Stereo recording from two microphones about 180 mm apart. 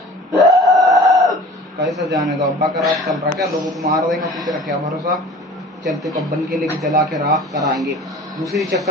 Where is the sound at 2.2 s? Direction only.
Centre (ahead or behind).